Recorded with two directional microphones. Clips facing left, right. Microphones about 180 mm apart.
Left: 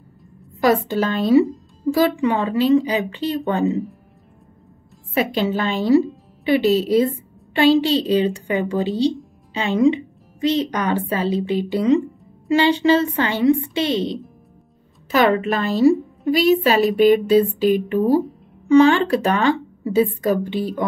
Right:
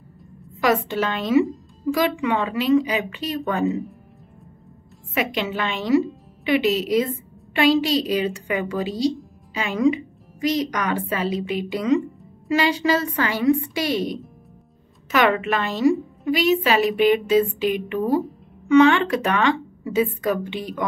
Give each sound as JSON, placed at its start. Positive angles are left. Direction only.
{"t": 0.6, "sound": "a woman's voice", "side_deg": 35}
{"t": 5.1, "sound": "a woman's voice", "side_deg": 35}
{"t": 15.0, "sound": "a woman's voice", "side_deg": 35}